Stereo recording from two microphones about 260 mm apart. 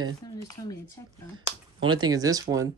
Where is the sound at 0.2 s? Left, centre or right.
Centre.